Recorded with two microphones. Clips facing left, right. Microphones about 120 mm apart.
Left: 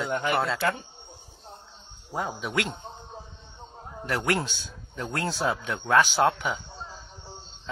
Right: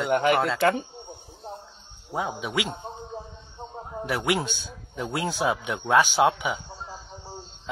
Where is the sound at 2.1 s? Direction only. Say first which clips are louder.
Right 1 dB; 5° right (ahead or behind).